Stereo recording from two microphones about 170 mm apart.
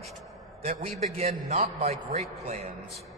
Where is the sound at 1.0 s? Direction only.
40° right (ahead or behind).